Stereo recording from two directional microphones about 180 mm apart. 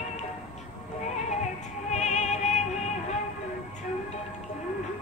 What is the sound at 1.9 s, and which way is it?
Music, 40° left (ahead or behind).